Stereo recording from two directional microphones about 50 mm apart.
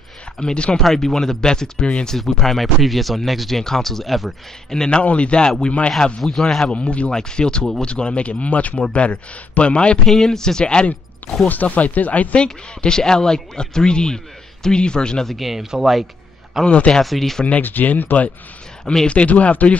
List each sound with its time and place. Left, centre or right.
0.4 s speech: centre
0.7 s speech: centre
2.0 s speech: centre
4.7 s speech: centre
6.2 s speech: centre
6.7 s speech: left
10.0 s speech: centre
11.4 s speech: left
12.4 s speech: centre
15.2 s speech: centre
16.6 s speech: left
17.0 s speech: centre
17.5 s speech: left